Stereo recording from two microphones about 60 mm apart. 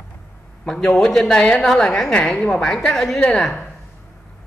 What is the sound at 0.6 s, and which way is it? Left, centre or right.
A woman's voice, centre.